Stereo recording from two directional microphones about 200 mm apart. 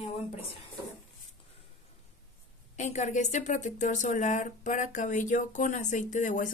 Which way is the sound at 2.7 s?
35° left (ahead or behind).